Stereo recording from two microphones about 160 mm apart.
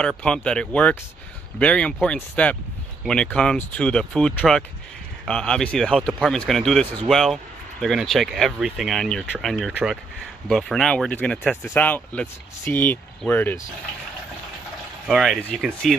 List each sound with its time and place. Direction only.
0.2 s speech: 5° left (ahead or behind)
15.0 s speech: centre (ahead or behind)